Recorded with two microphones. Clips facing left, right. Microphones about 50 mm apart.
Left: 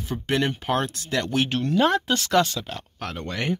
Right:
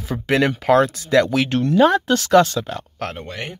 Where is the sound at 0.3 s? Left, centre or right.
Right.